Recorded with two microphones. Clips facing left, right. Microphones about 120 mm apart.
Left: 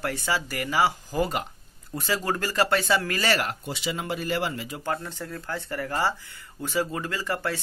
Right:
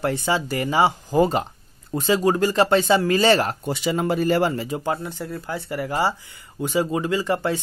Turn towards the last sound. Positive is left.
turn(degrees=-20)  # may be behind; listen again after turning